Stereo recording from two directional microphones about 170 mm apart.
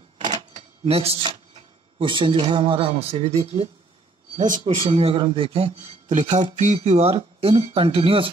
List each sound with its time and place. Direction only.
0.5 s speech: 35° right (ahead or behind)